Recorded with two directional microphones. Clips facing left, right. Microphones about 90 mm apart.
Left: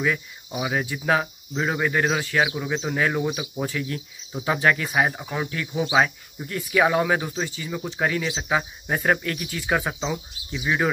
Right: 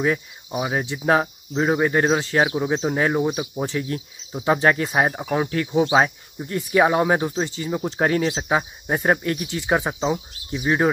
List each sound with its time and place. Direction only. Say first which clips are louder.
0.0 s speech: right 3 dB; 35° right (ahead or behind); by 10.2 s 15° right (ahead or behind)
10.5 s speech: right 4 dB; 35° right (ahead or behind)